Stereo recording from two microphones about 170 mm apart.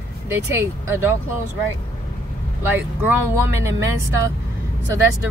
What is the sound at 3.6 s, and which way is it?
Speech, 15° right (ahead or behind).